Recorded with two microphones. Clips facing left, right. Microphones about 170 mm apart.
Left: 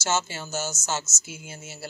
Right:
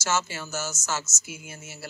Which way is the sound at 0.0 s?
25° left (ahead or behind).